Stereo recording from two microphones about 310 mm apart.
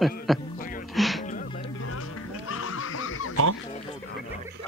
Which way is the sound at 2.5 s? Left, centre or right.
Left.